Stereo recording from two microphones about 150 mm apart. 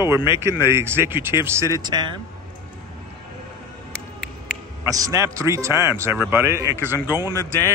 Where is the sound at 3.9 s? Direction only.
5° left (ahead or behind).